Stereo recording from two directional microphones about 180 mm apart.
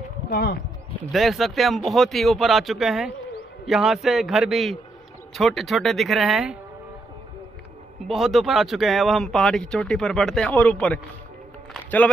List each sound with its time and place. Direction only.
0.3 s speech: 55° left (ahead or behind)
1.1 s speech: centre (ahead or behind)
8.1 s a man's voice: centre (ahead or behind)